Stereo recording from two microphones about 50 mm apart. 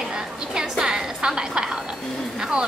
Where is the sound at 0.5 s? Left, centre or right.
Centre.